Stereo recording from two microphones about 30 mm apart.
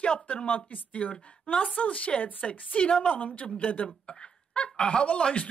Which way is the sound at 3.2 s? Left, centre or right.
Left.